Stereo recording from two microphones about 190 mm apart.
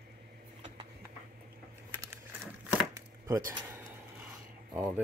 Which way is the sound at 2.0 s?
15° right (ahead or behind).